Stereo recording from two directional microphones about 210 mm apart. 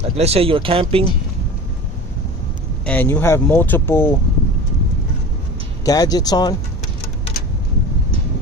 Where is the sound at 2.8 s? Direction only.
5° left (ahead or behind).